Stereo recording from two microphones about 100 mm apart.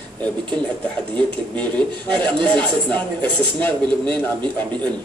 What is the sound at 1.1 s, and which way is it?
Speech, 10° left (ahead or behind).